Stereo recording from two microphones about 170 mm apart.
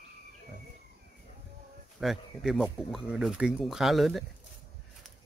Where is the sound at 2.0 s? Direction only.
Centre (ahead or behind).